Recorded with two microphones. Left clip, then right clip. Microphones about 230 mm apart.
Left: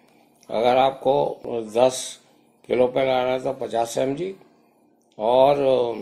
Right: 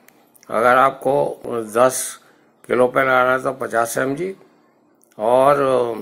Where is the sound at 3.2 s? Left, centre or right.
Centre.